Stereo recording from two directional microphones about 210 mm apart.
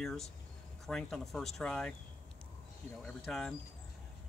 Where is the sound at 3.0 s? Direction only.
Centre (ahead or behind).